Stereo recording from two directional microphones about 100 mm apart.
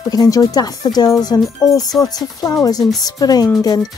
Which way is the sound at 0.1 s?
40° left (ahead or behind).